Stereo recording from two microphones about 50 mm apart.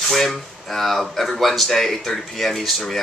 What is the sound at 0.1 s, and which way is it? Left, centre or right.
Speech, centre.